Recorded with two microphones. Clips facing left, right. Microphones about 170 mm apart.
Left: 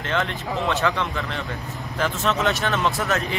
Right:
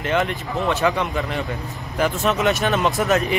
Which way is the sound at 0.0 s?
15° right (ahead or behind).